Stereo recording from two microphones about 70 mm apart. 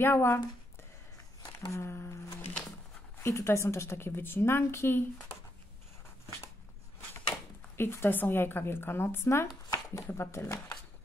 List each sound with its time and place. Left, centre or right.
0.0 s a woman's voice: left
1.7 s a woman's voice: left
7.7 s a woman's voice: left
9.7 s a sound: left
10.0 s a woman's voice: left